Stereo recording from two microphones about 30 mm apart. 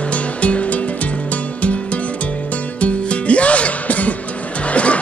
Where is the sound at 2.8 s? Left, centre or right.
Left.